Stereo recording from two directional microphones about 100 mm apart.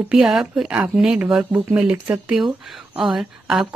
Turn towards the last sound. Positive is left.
turn(degrees=-5)  # may be behind; listen again after turning